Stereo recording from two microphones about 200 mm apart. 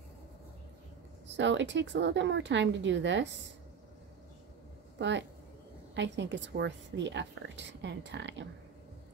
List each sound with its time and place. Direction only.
1.2 s a woman's voice: 65° right (ahead or behind)
4.9 s a woman's voice: 60° right (ahead or behind)